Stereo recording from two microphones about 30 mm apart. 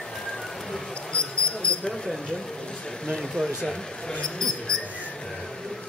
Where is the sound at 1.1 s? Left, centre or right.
Left.